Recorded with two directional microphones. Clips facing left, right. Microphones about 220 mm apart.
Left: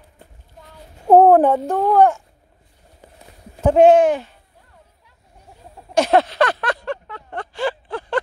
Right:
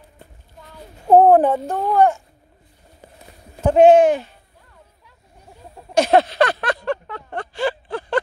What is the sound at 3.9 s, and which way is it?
Speech, 30° right (ahead or behind).